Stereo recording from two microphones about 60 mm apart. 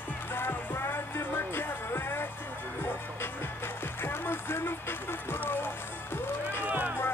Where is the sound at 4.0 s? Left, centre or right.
Left.